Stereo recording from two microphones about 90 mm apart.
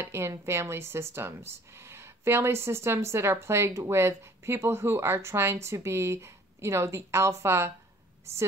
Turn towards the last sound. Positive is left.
turn(degrees=-30)  # may be behind; listen again after turning